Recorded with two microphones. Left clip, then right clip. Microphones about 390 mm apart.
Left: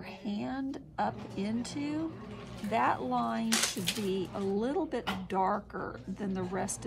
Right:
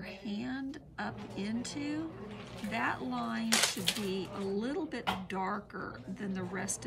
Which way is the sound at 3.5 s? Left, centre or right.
Right.